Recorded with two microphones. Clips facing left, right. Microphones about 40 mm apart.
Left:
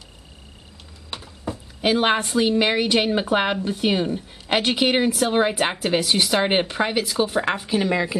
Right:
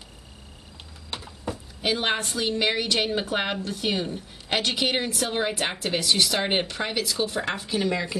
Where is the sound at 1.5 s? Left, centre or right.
Centre.